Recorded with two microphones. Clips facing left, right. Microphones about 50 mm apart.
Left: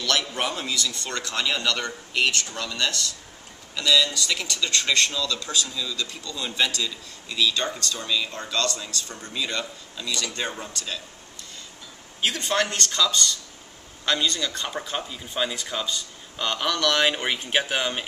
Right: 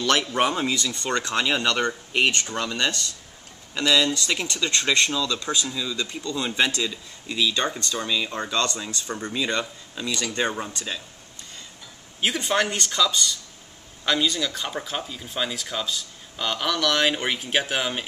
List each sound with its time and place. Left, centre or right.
0.0 s speech: right
4.3 s speech: right
12.2 s speech: centre